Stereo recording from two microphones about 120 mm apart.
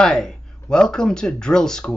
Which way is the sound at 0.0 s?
5° left (ahead or behind).